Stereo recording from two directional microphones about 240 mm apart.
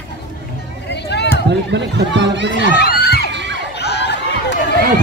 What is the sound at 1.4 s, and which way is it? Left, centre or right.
Speech, right.